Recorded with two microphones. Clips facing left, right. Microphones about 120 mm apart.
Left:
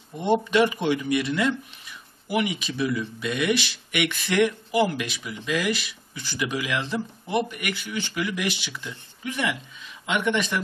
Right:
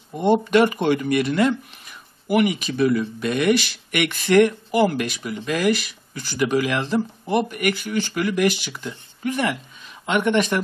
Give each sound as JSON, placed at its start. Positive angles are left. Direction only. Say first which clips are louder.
{"t": 0.2, "sound": "speech", "louder": "right 4 dB", "side_deg": -50}